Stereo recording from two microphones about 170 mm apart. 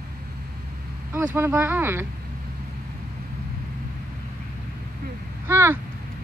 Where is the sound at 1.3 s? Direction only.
15° right (ahead or behind).